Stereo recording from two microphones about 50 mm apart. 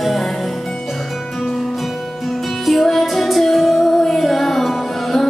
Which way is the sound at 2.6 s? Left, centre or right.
Centre.